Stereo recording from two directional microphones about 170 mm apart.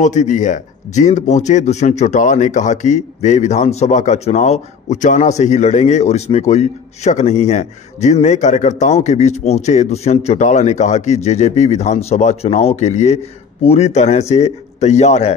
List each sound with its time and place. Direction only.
0.0 s speech: 45° left (ahead or behind)